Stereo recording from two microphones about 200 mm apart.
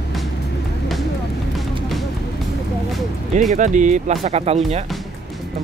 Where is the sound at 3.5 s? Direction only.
40° right (ahead or behind).